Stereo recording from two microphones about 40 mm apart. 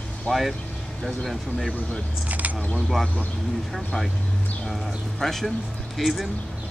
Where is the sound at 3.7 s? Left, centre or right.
Centre.